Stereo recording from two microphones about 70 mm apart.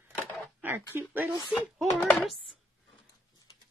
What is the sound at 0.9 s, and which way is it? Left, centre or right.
Speech, right.